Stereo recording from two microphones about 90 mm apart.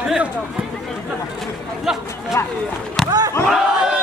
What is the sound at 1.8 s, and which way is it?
Speech, 5° right (ahead or behind).